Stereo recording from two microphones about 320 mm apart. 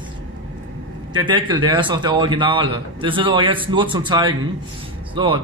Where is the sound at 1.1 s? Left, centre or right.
Centre.